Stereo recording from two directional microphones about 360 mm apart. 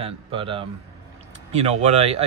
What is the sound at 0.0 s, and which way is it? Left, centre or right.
Speech, centre.